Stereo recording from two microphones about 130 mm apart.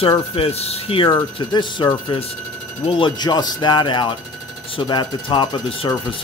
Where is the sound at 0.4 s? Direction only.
50° left (ahead or behind).